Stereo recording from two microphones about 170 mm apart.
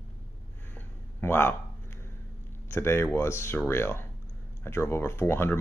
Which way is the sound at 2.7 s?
15° left (ahead or behind).